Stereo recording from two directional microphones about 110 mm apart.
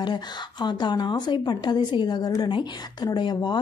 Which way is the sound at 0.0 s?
45° left (ahead or behind).